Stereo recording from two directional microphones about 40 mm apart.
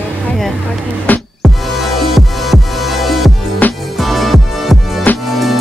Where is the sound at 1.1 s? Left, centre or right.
Left.